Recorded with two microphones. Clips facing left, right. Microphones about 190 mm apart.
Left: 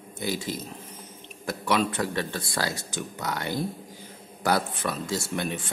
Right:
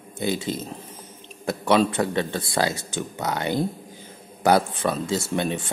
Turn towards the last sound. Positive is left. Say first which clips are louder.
# right 5 dB
turn(degrees=-25)  # may be behind; listen again after turning